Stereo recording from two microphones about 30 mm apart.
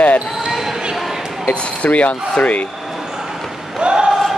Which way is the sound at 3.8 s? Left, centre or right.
Right.